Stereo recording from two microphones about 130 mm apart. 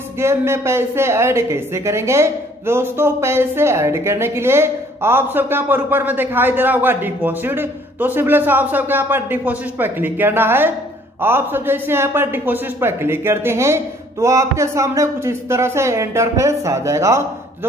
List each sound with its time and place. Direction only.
0.2 s a man's voice: 20° right (ahead or behind)